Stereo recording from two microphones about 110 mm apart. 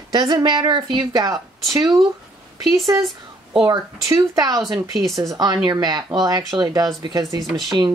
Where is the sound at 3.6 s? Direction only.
40° right (ahead or behind).